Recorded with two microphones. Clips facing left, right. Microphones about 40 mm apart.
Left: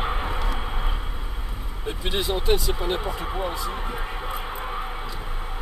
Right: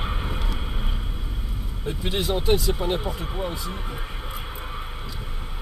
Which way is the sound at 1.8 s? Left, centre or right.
Centre.